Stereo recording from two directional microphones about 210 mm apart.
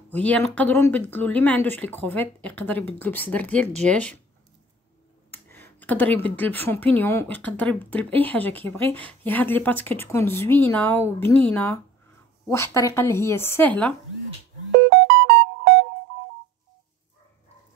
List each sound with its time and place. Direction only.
0.1 s speech: 5° left (ahead or behind)
5.3 s speech: 10° left (ahead or behind)
14.9 s music: 55° right (ahead or behind)